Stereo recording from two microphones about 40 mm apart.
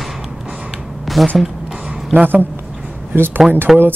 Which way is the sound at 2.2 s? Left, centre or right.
Right.